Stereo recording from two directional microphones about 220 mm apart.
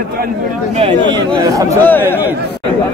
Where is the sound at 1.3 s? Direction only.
15° right (ahead or behind).